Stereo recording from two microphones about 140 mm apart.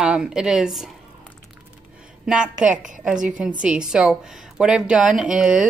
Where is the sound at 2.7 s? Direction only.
65° right (ahead or behind).